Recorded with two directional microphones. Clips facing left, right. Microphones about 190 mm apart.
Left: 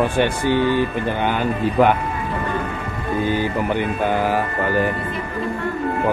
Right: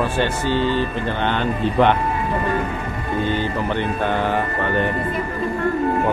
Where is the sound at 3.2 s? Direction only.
10° left (ahead or behind).